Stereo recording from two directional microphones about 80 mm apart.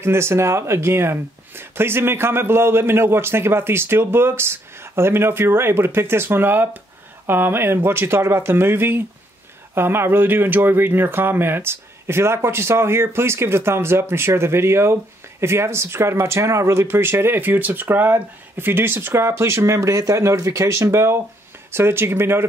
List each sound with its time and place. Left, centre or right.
0.0 s speech: right